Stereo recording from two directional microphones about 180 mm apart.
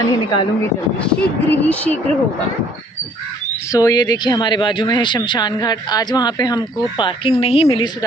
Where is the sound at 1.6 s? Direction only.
5° left (ahead or behind).